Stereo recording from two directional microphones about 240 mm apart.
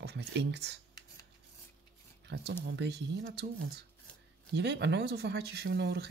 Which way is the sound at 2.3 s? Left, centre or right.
Right.